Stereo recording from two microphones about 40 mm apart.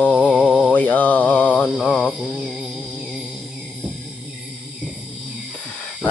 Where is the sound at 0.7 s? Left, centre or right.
Left.